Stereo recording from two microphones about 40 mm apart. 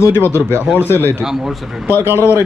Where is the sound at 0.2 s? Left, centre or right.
Left.